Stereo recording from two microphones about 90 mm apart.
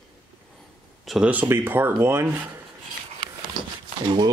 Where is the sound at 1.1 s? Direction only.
Centre (ahead or behind).